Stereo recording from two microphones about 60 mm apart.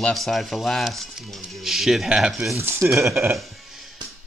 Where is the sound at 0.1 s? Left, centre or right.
Centre.